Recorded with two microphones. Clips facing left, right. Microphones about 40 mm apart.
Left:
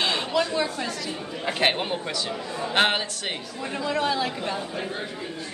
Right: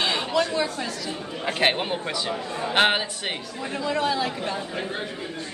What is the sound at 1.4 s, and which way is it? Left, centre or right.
A man's voice, centre.